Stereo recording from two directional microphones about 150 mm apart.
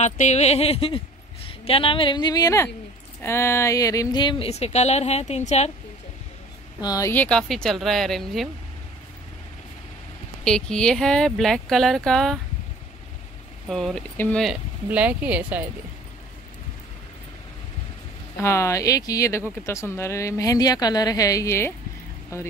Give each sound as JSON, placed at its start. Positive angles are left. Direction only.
{"t": 0.0, "sound": "a woman's voice", "side_deg": 50}
{"t": 4.5, "sound": "speech", "side_deg": 45}
{"t": 6.8, "sound": "speech", "side_deg": 25}
{"t": 10.4, "sound": "speech", "side_deg": 5}
{"t": 13.7, "sound": "speech", "side_deg": 0}
{"t": 14.1, "sound": "speech", "side_deg": 10}
{"t": 14.4, "sound": "speech", "side_deg": -5}
{"t": 18.4, "sound": "a woman's voice", "side_deg": 20}